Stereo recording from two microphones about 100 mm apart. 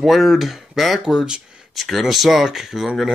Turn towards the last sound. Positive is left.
turn(degrees=-5)  # may be behind; listen again after turning